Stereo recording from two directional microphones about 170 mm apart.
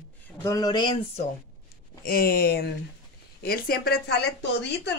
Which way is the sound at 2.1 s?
60° left (ahead or behind).